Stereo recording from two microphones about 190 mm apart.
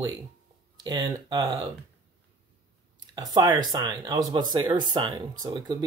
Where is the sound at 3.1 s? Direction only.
20° right (ahead or behind).